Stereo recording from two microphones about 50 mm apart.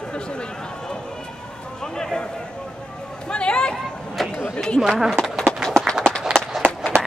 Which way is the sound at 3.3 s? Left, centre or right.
Centre.